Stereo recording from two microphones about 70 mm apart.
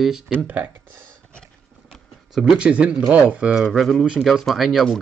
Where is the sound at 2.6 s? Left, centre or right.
Centre.